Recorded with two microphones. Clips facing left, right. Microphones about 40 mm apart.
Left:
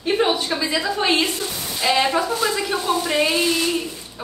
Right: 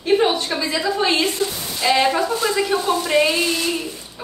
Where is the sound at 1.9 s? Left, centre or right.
Centre.